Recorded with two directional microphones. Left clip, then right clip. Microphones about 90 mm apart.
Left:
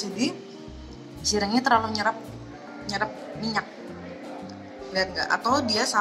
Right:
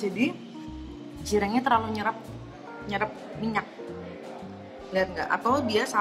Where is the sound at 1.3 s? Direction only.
35° left (ahead or behind).